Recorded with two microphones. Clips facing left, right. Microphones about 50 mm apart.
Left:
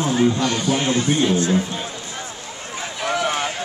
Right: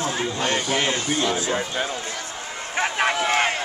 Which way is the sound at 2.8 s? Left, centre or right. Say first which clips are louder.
Right 2 dB; right.